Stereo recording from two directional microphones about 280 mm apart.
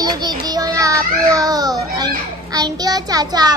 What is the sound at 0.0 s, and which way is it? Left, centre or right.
Child singing, centre.